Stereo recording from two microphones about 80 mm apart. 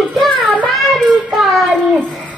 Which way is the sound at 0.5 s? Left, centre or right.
Centre.